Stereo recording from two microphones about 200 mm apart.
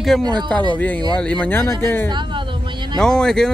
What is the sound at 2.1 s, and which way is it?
Speech, 20° right (ahead or behind).